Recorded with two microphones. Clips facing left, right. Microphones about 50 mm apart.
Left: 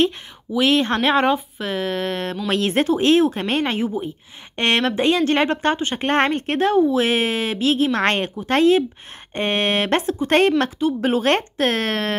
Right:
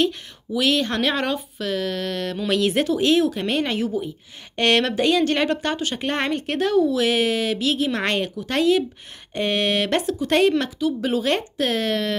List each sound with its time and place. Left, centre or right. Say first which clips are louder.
0.6 s a woman's voice: left 3 dB; left